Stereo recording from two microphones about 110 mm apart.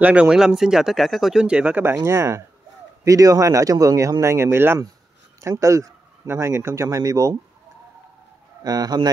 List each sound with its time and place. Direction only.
0.0 s speech: 10° right (ahead or behind); by 7.3 s 30° right (ahead or behind)
8.6 s speech: 35° right (ahead or behind)